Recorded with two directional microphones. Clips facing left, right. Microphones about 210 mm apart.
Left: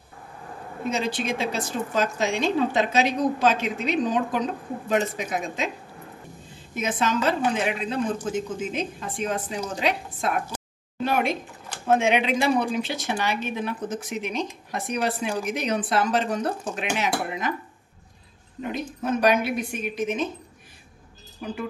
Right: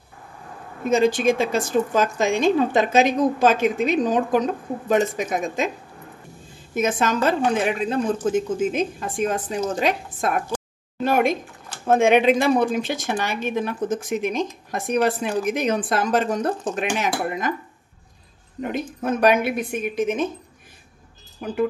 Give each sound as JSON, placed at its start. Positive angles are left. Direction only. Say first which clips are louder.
{"t": 0.8, "sound": "a woman's voice", "louder": "right 9 dB", "side_deg": -50}
{"t": 6.7, "sound": "a woman's voice", "louder": "right 4 dB", "side_deg": -45}
{"t": 18.6, "sound": "a woman's voice", "louder": "right 3 dB", "side_deg": -55}